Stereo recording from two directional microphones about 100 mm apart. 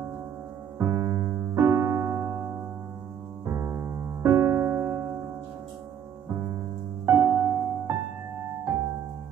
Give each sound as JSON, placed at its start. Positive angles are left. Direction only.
{"t": 0.7, "sound": "keyboard", "side_deg": -30}
{"t": 3.4, "sound": "music", "side_deg": -25}
{"t": 6.3, "sound": "music", "side_deg": -30}